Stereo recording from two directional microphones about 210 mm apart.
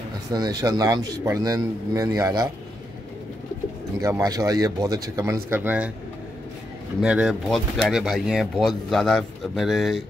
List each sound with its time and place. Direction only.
0.3 s a man's voice: 20° right (ahead or behind)
4.0 s a man's voice: 15° right (ahead or behind)
7.0 s speech: 5° right (ahead or behind)